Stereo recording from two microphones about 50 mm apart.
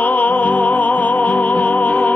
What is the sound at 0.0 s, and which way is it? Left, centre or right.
Music, left.